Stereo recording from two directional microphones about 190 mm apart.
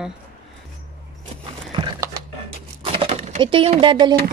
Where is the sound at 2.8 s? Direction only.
30° right (ahead or behind).